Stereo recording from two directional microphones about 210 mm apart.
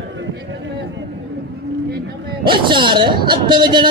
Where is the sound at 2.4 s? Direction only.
25° right (ahead or behind).